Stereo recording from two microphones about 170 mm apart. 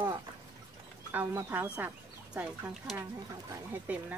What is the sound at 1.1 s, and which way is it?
Speech, 10° right (ahead or behind).